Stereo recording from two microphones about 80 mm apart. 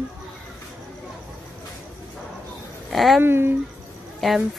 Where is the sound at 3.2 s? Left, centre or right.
Right.